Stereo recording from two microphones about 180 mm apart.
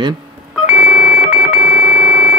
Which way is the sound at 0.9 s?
55° right (ahead or behind).